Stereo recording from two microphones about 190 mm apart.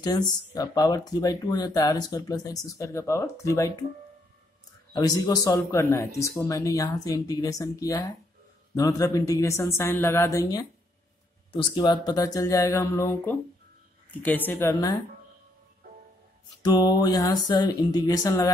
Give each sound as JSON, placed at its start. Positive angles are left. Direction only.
{"t": 0.0, "sound": "speech", "side_deg": 20}
{"t": 4.9, "sound": "speech", "side_deg": 20}
{"t": 16.6, "sound": "speech", "side_deg": 20}